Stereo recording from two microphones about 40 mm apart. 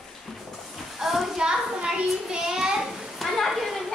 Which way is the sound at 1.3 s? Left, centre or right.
Centre.